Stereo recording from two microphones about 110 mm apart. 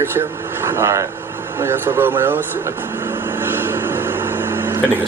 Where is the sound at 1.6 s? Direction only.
20° right (ahead or behind).